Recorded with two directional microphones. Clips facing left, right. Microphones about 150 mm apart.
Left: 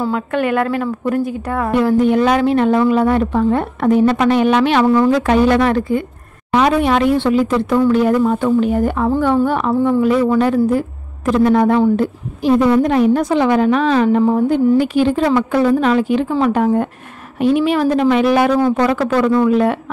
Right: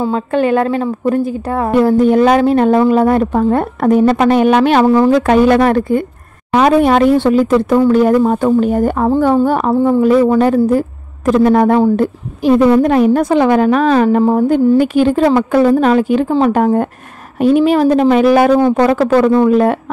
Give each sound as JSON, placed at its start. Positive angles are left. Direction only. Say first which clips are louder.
{"t": 0.0, "sound": "a woman's voice", "louder": "right 4 dB", "side_deg": -30}
{"t": 5.2, "sound": "a woman's voice", "louder": "right 3 dB", "side_deg": -50}